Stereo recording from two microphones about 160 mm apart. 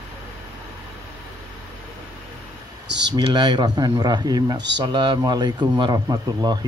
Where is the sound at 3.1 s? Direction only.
30° right (ahead or behind).